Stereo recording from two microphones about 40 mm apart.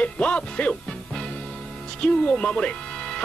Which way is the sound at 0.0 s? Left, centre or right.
Left.